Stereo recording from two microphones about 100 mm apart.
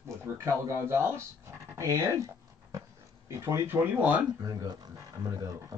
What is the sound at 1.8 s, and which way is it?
Dog, 30° right (ahead or behind).